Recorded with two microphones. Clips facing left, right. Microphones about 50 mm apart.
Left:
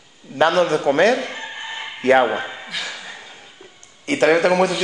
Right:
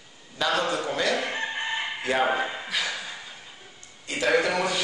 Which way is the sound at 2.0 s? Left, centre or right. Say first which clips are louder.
Left 11 dB; left.